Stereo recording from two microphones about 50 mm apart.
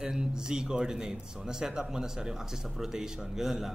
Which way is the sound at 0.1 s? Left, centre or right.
Centre.